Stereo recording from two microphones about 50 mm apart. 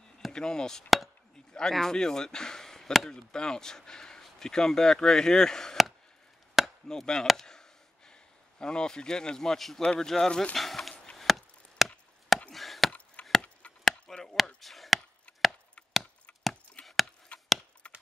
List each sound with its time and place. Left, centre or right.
0.3 s speech: centre
0.8 s chop: centre
1.5 s speech: centre
6.6 s chop: centre
6.9 s speech: centre
7.4 s a sound: centre
9.8 s speech: centre
11.1 s chop: centre
12.9 s wood: left
13.4 s chop: left
13.8 s chop: centre
16.8 s a sound: centre
17.3 s wood: left
17.8 s clip-clop: left